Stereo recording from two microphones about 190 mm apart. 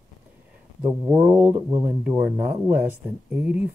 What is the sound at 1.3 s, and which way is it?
Speech, 10° right (ahead or behind).